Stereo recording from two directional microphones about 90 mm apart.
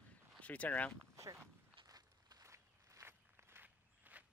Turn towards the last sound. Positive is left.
turn(degrees=-25)  # may be behind; listen again after turning